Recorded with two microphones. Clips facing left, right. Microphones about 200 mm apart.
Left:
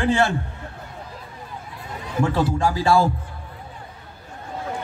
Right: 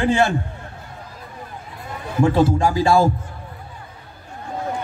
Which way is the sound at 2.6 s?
15° right (ahead or behind).